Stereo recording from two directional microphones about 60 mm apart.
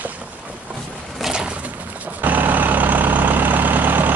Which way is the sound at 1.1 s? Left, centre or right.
Centre.